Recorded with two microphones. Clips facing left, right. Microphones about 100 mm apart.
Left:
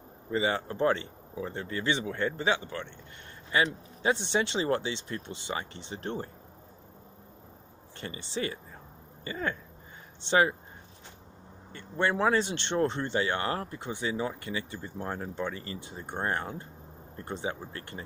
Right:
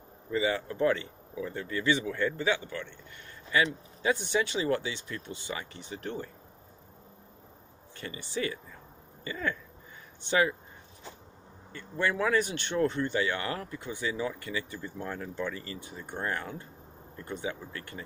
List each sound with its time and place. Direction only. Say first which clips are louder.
0.3 s speech: even; 30° left (ahead or behind)
8.0 s speech: even; 25° left (ahead or behind)
11.7 s speech: left 2 dB; 30° left (ahead or behind)